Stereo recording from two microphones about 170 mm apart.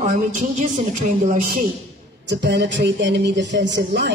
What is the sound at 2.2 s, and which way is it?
Speech, 85° right.